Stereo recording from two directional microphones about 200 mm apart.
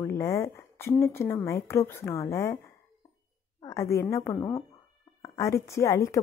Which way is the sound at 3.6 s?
15° left (ahead or behind).